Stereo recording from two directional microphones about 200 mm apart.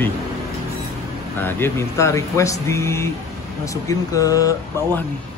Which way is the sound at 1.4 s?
10° left (ahead or behind).